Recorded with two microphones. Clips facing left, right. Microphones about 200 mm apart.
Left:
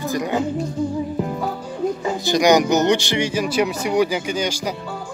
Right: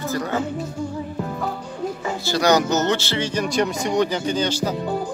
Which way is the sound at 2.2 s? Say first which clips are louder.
Left 3 dB; 15° left (ahead or behind).